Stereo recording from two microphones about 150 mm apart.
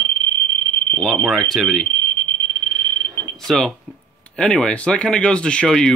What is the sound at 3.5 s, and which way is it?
Speech, centre (ahead or behind).